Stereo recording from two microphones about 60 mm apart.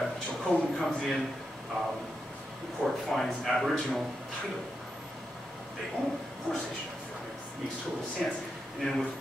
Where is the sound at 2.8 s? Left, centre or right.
Centre.